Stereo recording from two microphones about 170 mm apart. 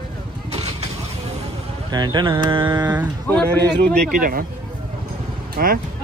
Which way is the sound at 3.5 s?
75° right (ahead or behind).